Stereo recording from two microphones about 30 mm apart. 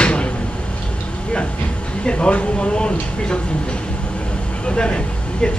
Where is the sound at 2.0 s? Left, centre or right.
Left.